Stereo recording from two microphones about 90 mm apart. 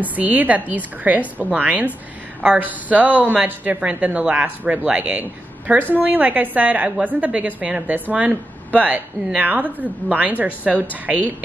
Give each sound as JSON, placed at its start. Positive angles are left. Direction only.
{"t": 0.0, "sound": "a woman's voice", "side_deg": -20}